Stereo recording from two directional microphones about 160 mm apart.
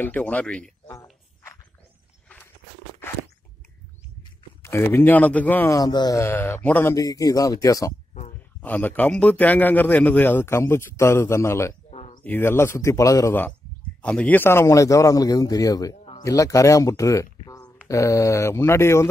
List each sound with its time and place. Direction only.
0.0 s a man's voice: 10° left (ahead or behind)
4.6 s a man's voice: 15° left (ahead or behind)
5.8 s a man's voice: 25° left (ahead or behind)
8.5 s a man's voice: 10° left (ahead or behind)